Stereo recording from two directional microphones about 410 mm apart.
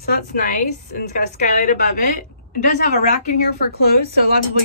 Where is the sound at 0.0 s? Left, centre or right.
Left.